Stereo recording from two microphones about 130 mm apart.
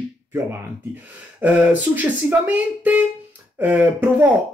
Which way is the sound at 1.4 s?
10° right (ahead or behind).